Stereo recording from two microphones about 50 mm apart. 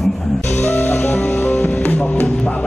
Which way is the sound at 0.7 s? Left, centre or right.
Left.